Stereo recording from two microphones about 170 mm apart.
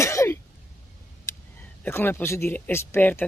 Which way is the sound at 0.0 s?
15° left (ahead or behind).